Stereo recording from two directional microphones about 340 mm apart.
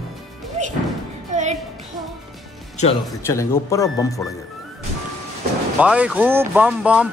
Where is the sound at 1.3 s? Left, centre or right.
Centre.